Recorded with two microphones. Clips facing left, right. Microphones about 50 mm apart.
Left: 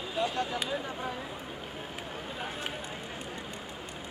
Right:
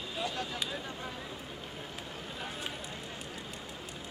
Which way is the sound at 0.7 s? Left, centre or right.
Left.